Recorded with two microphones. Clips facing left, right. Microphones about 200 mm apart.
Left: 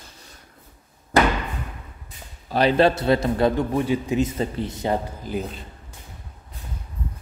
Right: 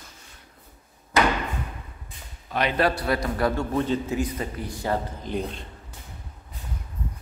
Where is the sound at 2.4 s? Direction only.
35° left (ahead or behind).